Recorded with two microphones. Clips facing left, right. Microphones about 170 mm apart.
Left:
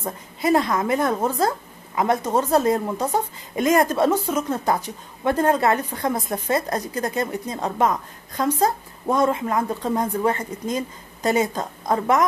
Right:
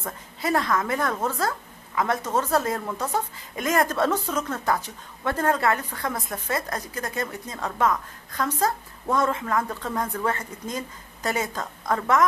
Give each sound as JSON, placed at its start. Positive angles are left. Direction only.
{"t": 0.0, "sound": "a woman's voice", "side_deg": 20}